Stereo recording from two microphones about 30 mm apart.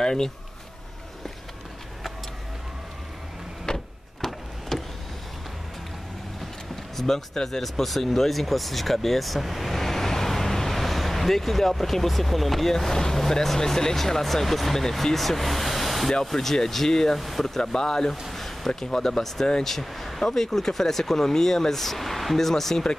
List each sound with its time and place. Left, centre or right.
0.0 s speech: left
3.7 s printer: left
4.2 s vehicle: centre
7.1 s speech: centre
7.6 s speech: centre
17.2 s speech: centre
17.6 s speech: centre
18.3 s a sound: centre
18.8 s speech: centre